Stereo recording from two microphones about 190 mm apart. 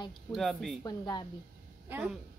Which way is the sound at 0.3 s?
Centre (ahead or behind).